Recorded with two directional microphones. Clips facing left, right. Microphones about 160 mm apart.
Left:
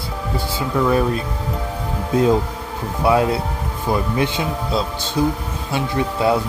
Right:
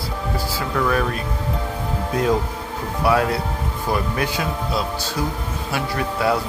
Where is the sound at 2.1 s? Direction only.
25° left (ahead or behind).